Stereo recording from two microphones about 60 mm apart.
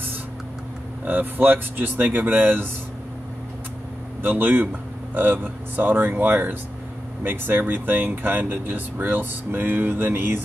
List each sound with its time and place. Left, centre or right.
1.0 s speech: right
4.2 s speech: right